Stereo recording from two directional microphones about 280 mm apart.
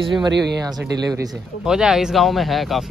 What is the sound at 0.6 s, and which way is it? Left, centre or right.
Speech, centre.